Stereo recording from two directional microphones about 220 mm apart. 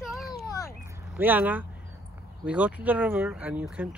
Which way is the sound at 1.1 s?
10° right (ahead or behind).